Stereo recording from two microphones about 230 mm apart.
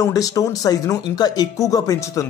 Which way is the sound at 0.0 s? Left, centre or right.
Centre.